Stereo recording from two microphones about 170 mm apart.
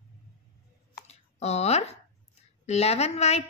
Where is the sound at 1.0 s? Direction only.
40° left (ahead or behind).